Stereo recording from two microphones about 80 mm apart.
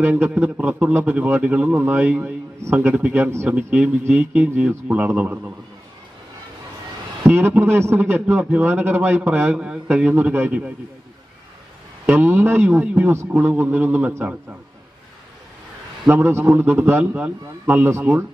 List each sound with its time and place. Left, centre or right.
0.0 s a man's voice: right
1.7 s a man's voice: right
3.2 s a man's voice: right
3.4 s a man's voice: centre
7.2 s a man's voice: right; by 10.1 s centre
10.1 s a man's voice: right
12.1 s a man's voice: right
16.1 s a man's voice: right